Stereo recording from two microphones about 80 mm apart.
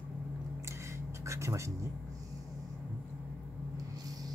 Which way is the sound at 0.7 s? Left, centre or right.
Right.